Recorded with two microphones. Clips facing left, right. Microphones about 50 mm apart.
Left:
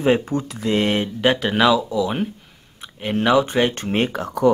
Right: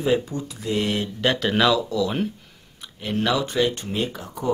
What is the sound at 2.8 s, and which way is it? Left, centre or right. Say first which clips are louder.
Speech: left 4 dB; left.